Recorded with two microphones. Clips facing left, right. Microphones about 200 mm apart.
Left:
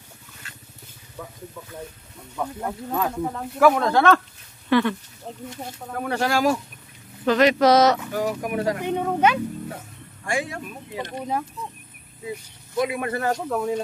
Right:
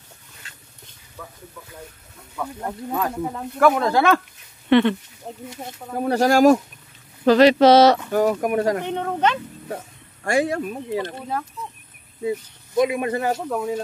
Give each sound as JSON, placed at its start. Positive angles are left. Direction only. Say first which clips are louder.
{"t": 2.3, "sound": "speech", "louder": "left 1 dB", "side_deg": 10}
{"t": 2.9, "sound": "speech", "louder": "right 1 dB", "side_deg": 0}
{"t": 4.6, "sound": "speech", "louder": "right 4 dB", "side_deg": -25}
{"t": 5.2, "sound": "speech", "louder": "right 1 dB", "side_deg": -5}
{"t": 6.0, "sound": "speech", "louder": "right 7 dB", "side_deg": -40}
{"t": 7.2, "sound": "speech", "louder": "right 4 dB", "side_deg": -30}
{"t": 8.1, "sound": "speech", "louder": "right 6 dB", "side_deg": -50}
{"t": 8.8, "sound": "speech", "louder": "left 1 dB", "side_deg": 10}
{"t": 10.2, "sound": "speech", "louder": "right 7 dB", "side_deg": -40}
{"t": 11.0, "sound": "speech", "louder": "left 3 dB", "side_deg": 15}
{"t": 12.7, "sound": "speech", "louder": "right 4 dB", "side_deg": -20}
{"t": 13.3, "sound": "speech", "louder": "even", "side_deg": 0}